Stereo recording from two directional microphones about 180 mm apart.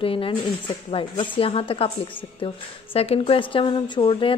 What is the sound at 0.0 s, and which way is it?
Speech, 30° left (ahead or behind).